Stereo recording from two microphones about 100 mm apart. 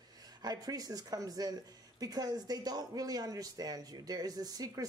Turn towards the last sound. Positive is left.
turn(degrees=-40)  # may be behind; listen again after turning